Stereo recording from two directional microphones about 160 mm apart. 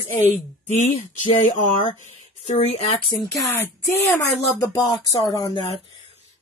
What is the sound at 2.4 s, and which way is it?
Speech, 45° left (ahead or behind).